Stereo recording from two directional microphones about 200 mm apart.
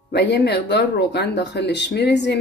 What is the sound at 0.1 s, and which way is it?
Speech, 60° left (ahead or behind).